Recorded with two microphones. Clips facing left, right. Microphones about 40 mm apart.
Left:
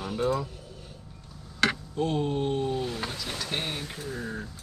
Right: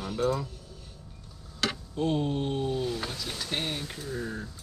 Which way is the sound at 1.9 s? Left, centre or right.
Centre.